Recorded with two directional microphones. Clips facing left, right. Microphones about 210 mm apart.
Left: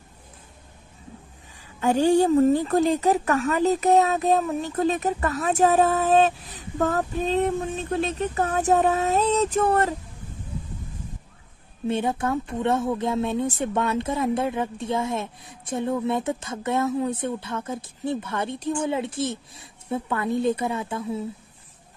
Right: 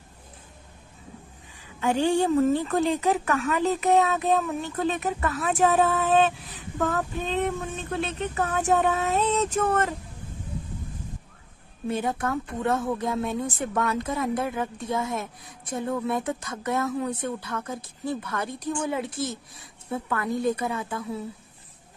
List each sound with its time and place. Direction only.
1.8 s speech: 40° left (ahead or behind)
11.9 s speech: 25° left (ahead or behind)